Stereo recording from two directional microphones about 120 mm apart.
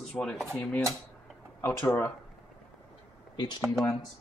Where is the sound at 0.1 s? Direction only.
5° left (ahead or behind).